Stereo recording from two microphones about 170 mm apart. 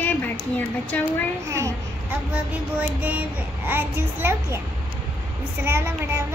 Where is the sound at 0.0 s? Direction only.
10° left (ahead or behind).